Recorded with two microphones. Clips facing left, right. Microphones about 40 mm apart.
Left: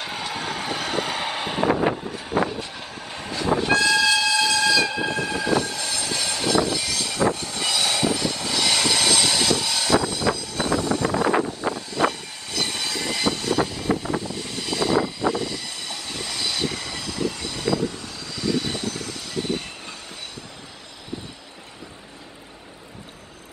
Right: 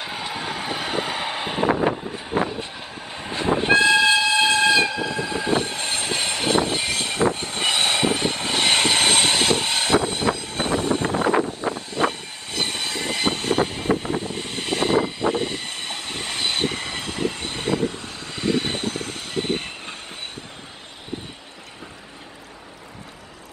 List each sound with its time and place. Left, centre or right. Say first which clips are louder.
0.0 s vehicle: even; centre
2.1 s vehicle: even; right
3.3 s train: right 2 dB; right
5.1 s vehicle: even; right